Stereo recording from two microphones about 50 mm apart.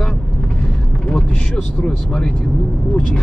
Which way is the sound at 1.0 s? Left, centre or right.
Left.